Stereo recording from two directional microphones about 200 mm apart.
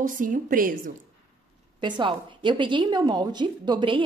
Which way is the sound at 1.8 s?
25° right (ahead or behind).